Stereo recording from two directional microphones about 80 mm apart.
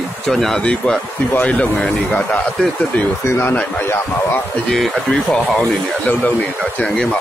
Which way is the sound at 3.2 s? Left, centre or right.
Left.